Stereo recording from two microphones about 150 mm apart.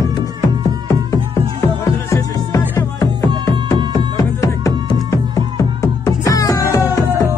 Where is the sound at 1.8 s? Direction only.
20° left (ahead or behind).